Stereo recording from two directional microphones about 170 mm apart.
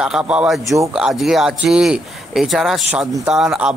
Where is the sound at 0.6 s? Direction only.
20° right (ahead or behind).